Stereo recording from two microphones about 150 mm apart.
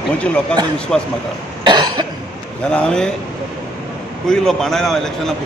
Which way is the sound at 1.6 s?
30° right (ahead or behind).